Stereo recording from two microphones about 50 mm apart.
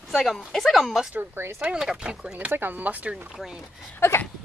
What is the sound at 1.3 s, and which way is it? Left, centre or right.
Speech, right.